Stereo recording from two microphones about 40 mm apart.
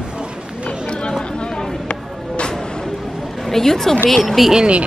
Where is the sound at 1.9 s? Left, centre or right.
Left.